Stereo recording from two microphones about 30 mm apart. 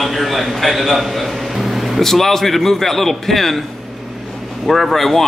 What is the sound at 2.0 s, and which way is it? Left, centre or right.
A man's voice, centre.